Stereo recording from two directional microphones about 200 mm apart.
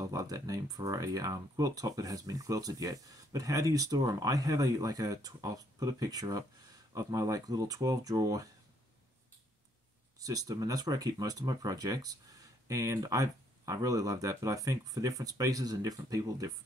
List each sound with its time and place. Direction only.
0.0 s speech: 15° right (ahead or behind)
10.1 s speech: 20° right (ahead or behind)